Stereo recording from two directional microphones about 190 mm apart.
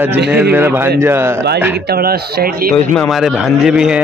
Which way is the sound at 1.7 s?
55° right (ahead or behind).